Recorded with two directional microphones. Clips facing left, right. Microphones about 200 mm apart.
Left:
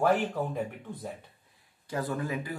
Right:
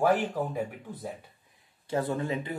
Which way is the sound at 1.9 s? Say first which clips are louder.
Right 3 dB; 25° right (ahead or behind).